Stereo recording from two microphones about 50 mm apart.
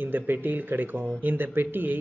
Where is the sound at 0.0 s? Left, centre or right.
Right.